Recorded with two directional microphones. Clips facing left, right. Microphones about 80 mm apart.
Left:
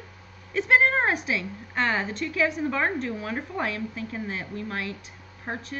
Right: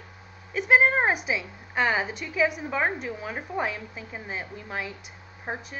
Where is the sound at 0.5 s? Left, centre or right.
Centre.